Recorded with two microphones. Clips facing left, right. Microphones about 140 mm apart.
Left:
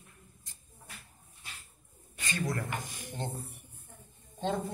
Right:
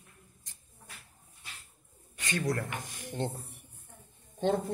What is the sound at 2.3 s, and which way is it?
Speech, 65° right (ahead or behind).